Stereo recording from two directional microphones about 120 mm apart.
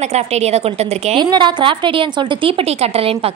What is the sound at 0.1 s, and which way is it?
Speech, 65° right (ahead or behind).